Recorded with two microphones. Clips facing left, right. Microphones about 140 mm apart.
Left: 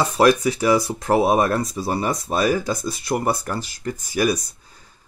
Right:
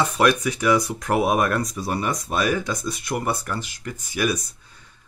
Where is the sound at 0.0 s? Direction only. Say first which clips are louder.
Left 3 dB; 35° left (ahead or behind).